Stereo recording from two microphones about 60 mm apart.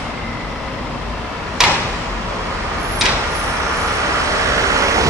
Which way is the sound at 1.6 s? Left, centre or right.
Centre.